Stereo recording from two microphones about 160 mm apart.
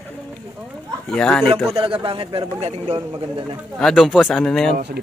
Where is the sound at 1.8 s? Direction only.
35° right (ahead or behind).